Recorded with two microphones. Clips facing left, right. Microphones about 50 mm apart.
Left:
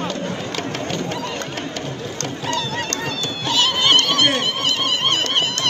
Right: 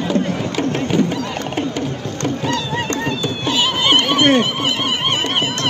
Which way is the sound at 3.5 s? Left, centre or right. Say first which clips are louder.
Right 1 dB; centre.